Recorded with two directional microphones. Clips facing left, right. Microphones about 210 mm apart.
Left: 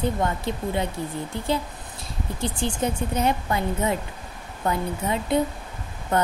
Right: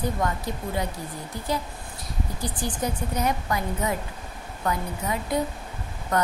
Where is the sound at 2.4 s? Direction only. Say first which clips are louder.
Left 4 dB; 25° left (ahead or behind).